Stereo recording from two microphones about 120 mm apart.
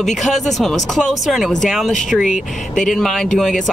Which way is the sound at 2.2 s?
90° left.